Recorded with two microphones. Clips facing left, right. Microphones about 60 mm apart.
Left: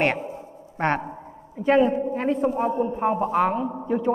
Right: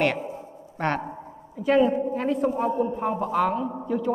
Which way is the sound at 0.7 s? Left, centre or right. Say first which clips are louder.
Left 3 dB; left.